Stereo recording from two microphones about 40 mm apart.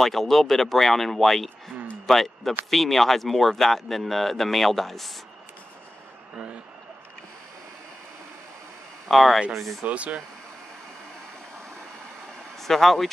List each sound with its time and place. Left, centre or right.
0.0 s speech: centre
6.3 s a sound: right
9.1 s speech: centre
9.8 s speech: right
12.5 s speech: centre